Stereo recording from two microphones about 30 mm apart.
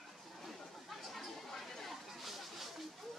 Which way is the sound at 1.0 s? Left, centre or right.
Centre.